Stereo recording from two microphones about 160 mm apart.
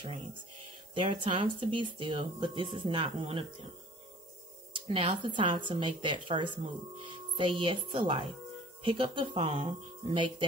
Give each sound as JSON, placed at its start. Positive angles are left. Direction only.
{"t": 0.0, "sound": "speech", "side_deg": -30}
{"t": 4.7, "sound": "speech", "side_deg": -35}